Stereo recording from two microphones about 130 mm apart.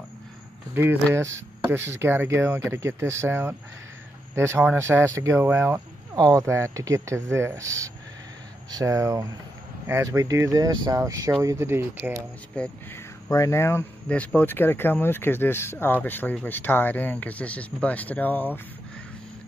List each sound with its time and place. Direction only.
0.7 s speech: 20° right (ahead or behind)
12.5 s speech: 10° left (ahead or behind)
13.3 s speech: 25° left (ahead or behind)
14.0 s speech: 10° left (ahead or behind)